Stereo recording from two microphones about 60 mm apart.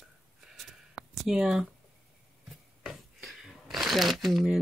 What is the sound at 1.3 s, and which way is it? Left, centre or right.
Speech, centre.